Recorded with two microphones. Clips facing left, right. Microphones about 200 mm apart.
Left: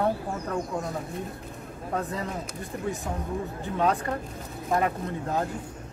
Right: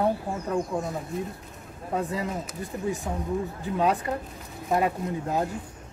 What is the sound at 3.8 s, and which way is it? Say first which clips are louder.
Speech: right 1 dB; 15° right (ahead or behind).